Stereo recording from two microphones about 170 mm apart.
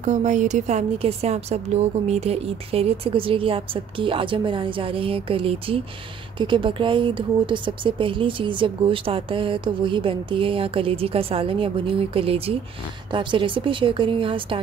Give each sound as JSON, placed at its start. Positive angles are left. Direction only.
{"t": 0.0, "sound": "speech", "side_deg": -45}